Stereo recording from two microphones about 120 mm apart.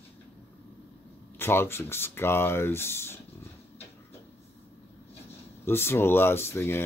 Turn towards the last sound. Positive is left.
turn(degrees=20)  # may be behind; listen again after turning